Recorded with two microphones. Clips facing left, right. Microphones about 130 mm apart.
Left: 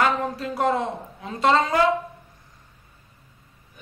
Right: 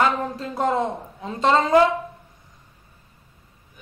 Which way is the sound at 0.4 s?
25° right (ahead or behind).